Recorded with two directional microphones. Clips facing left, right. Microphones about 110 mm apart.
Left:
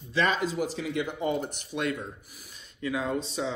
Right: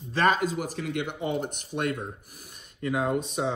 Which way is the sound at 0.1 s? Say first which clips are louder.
Right 3 dB; 50° right (ahead or behind).